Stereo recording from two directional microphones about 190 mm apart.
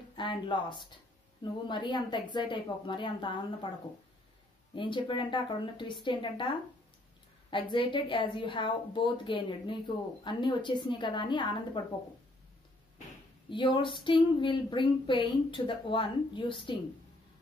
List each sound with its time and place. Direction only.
0.1 s a woman's voice: 25° left (ahead or behind)
4.7 s a woman's voice: 25° left (ahead or behind)
7.5 s a woman's voice: 25° left (ahead or behind)
13.5 s a woman's voice: 25° left (ahead or behind)